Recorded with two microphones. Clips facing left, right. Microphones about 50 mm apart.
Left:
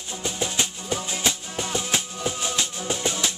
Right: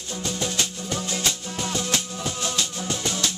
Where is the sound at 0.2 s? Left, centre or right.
Centre.